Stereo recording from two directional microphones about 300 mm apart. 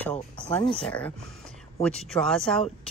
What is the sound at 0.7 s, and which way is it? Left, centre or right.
Speech, centre.